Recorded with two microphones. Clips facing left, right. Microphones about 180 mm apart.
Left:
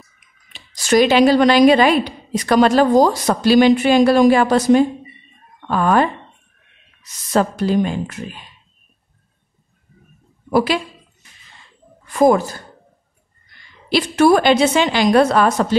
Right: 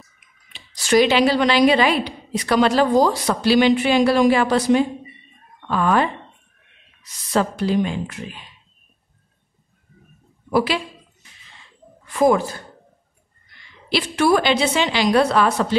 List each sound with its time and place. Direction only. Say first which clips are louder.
0.5 s speech: left 2 dB; 45° left (ahead or behind)
10.5 s a man's voice: left 3 dB; 45° left (ahead or behind)
12.1 s speech: left 3 dB; 40° left (ahead or behind)
13.8 s speech: left 5 dB; 45° left (ahead or behind)